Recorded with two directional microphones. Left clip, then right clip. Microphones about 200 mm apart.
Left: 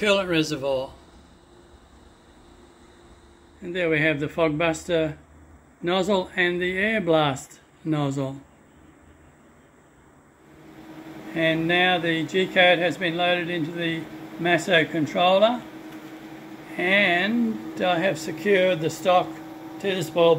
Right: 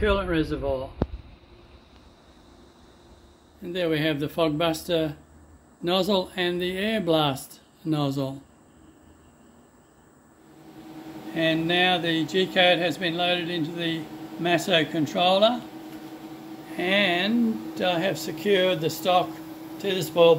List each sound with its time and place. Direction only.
0.0 s speech: 5° left (ahead or behind)
3.6 s speech: 5° right (ahead or behind)
11.3 s speech: centre (ahead or behind)
16.7 s speech: centre (ahead or behind)